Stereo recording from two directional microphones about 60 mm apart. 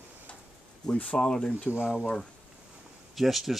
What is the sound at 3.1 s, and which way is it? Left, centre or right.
Speech, centre.